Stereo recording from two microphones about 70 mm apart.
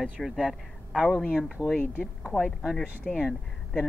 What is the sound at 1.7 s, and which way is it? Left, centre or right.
Speech, left.